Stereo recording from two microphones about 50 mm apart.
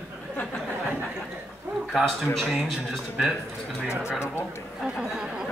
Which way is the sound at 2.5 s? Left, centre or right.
Centre.